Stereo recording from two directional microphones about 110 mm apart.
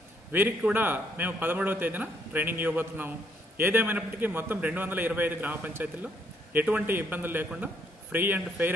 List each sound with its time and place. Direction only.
0.3 s a man's voice: 20° right (ahead or behind)